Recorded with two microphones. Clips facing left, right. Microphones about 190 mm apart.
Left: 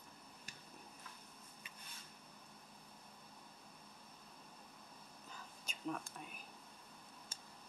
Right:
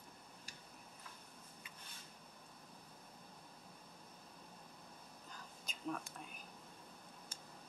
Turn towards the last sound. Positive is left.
turn(degrees=5)  # may be behind; listen again after turning